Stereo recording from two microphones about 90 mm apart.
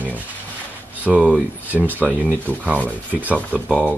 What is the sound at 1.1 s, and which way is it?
Speech, centre (ahead or behind).